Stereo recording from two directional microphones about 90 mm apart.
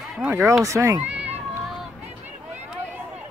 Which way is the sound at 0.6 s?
35° right (ahead or behind).